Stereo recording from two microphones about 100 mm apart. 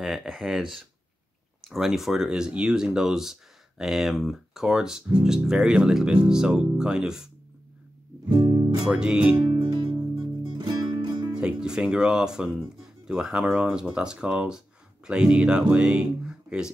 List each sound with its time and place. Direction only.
0.0 s speech: 5° right (ahead or behind)
8.3 s music: 45° right (ahead or behind)
8.8 s speech: 5° right (ahead or behind)
9.5 s music: 55° right (ahead or behind)
11.3 s speech: 10° right (ahead or behind)